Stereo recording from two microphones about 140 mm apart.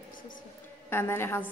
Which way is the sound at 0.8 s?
15° left (ahead or behind).